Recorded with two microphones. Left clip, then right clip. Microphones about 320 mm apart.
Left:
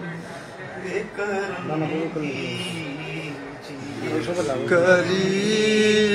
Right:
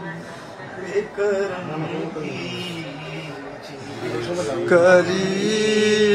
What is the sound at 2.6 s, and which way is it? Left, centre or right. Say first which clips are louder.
Music: even; right.